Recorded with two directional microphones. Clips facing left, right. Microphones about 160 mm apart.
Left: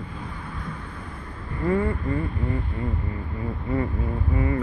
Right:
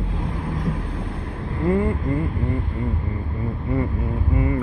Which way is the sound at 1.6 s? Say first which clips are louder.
Right 3 dB; 20° right (ahead or behind).